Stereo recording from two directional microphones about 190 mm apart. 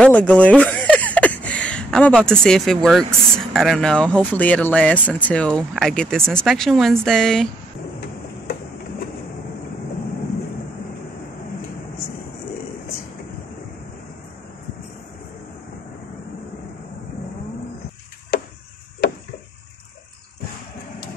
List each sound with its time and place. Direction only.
0.0 s a sound: 5° left (ahead or behind)
3.5 s speech: centre (ahead or behind)
18.3 s chop: 50° left (ahead or behind)